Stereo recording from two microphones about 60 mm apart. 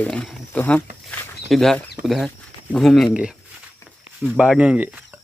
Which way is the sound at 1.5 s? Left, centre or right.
Centre.